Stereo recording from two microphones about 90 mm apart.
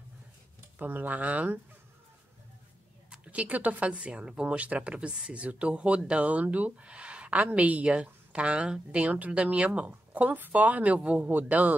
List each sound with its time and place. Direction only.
0.7 s speech: 20° right (ahead or behind)
3.1 s speech: 15° right (ahead or behind)